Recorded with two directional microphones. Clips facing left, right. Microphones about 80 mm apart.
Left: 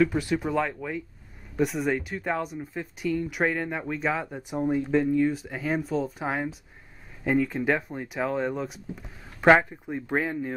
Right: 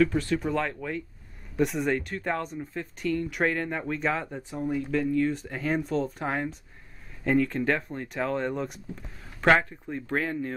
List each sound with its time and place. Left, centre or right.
0.0 s speech: centre
4.6 s speech: left
5.3 s speech: centre